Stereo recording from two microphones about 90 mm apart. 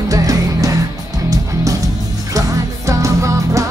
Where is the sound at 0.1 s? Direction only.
40° right (ahead or behind).